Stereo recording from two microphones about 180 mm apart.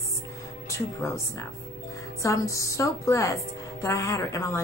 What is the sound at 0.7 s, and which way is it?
Speech, 15° left (ahead or behind).